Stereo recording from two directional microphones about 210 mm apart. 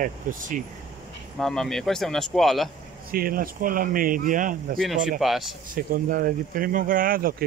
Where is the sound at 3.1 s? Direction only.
45° right (ahead or behind).